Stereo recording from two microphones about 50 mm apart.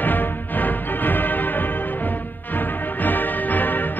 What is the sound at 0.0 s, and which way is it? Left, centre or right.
Music, left.